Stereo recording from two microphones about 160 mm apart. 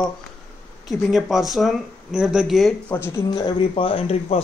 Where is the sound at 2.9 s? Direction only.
15° left (ahead or behind).